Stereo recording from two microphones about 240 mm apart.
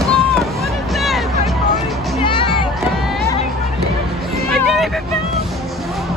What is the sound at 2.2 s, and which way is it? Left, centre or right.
Music, left.